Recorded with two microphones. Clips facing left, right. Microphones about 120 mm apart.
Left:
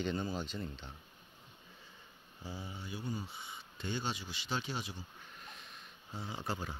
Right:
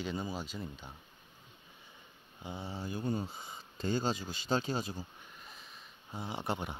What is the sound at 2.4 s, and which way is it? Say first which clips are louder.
Speech: right 3 dB; 25° right (ahead or behind).